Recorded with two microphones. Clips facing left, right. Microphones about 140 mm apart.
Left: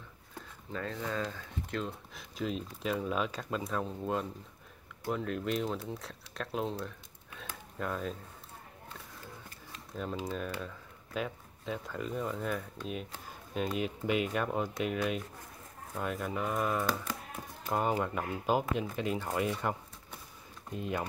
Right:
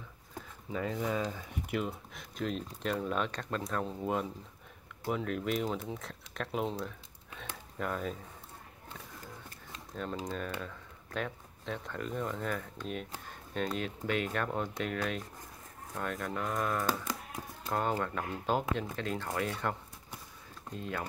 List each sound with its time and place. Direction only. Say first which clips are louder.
0.3 s speech: right 2 dB; 10° right (ahead or behind)
2.1 s speech: left 1 dB; centre (ahead or behind)
7.3 s a sound: right 1 dB; centre (ahead or behind)
9.9 s speech: left 1 dB; 5° left (ahead or behind)